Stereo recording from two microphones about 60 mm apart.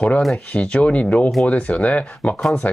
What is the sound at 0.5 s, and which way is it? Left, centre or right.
Speech, left.